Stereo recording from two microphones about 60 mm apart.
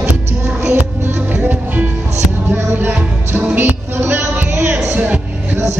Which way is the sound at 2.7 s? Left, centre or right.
Right.